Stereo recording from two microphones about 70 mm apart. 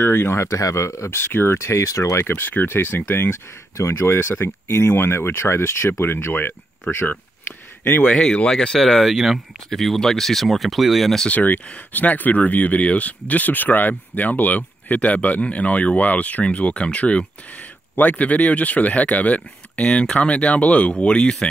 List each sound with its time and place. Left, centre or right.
0.0 s speech: left
2.3 s speech: left; by 11.2 s centre
11.2 s speech: left